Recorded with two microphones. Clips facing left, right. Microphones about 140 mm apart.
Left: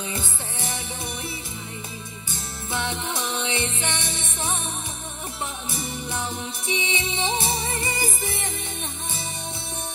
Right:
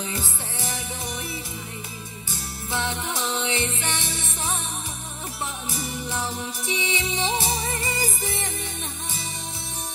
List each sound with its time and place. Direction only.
0.1 s music: 25° left (ahead or behind)
2.7 s music: 20° left (ahead or behind)
5.8 s music: 25° left (ahead or behind)